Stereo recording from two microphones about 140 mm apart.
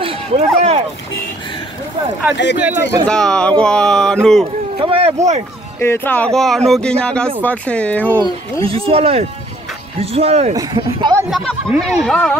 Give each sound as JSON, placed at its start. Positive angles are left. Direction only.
{"t": 0.0, "sound": "a sound", "side_deg": -45}
{"t": 2.2, "sound": "speech", "side_deg": -15}
{"t": 3.1, "sound": "speech", "side_deg": 5}
{"t": 4.7, "sound": "speech", "side_deg": -40}
{"t": 5.8, "sound": "speech", "side_deg": 15}
{"t": 8.6, "sound": "speech", "side_deg": -45}
{"t": 10.5, "sound": "speech", "side_deg": -25}
{"t": 11.2, "sound": "speech", "side_deg": 0}